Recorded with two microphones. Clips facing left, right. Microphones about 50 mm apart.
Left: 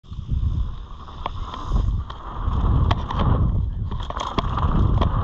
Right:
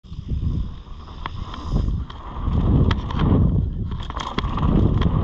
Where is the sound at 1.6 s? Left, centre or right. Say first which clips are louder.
Right 4 dB; left.